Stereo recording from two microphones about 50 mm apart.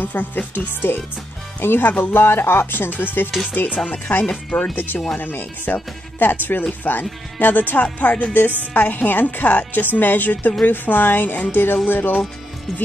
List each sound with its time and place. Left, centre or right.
0.0 s speech: left
0.9 s speech: left
4.3 s speech: left
4.7 s speech: left